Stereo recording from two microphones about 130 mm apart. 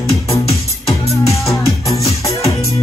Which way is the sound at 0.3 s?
50° left (ahead or behind).